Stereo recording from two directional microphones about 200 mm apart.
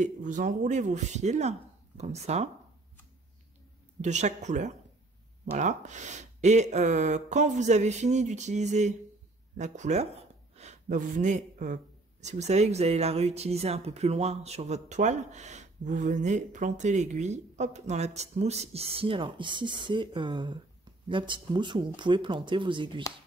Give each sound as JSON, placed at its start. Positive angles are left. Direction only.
{"t": 0.0, "sound": "speech", "side_deg": -40}
{"t": 4.0, "sound": "speech", "side_deg": -35}